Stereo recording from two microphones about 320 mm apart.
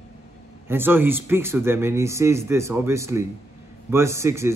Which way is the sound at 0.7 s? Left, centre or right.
Centre.